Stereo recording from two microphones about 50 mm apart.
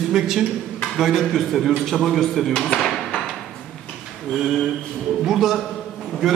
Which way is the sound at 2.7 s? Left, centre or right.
Centre.